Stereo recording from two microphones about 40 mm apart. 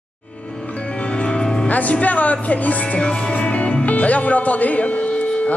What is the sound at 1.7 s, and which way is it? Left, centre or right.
A man's voice, left.